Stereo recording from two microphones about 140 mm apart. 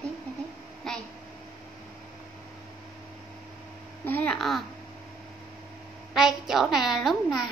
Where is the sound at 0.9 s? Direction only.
5° left (ahead or behind).